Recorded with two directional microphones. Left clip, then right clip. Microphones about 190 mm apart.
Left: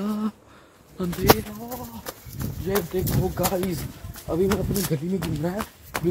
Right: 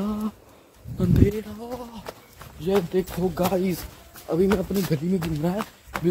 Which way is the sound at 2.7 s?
25° right (ahead or behind).